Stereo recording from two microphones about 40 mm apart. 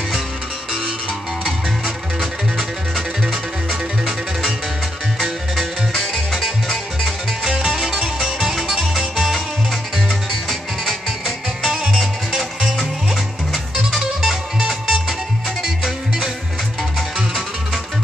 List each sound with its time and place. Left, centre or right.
7.4 s music: centre
11.6 s music: centre
12.7 s music: centre